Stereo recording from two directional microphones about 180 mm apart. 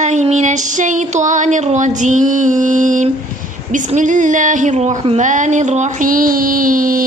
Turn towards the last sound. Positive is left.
turn(degrees=-50)  # may be behind; listen again after turning